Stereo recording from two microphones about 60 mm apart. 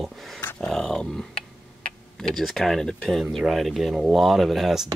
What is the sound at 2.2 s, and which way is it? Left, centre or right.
Speech, centre.